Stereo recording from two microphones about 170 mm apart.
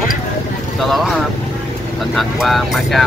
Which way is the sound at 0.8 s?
Centre (ahead or behind).